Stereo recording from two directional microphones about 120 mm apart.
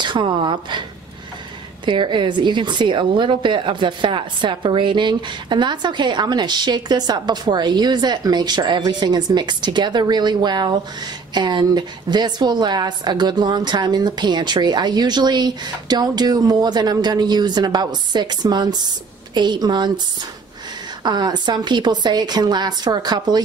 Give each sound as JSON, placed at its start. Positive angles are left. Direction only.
{"t": 0.0, "sound": "a woman's voice", "side_deg": -40}
{"t": 1.9, "sound": "a woman's voice", "side_deg": -40}
{"t": 21.0, "sound": "a woman's voice", "side_deg": -35}